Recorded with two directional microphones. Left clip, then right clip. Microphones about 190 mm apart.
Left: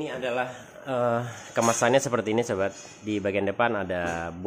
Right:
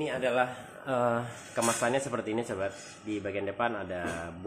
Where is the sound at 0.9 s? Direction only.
30° left (ahead or behind).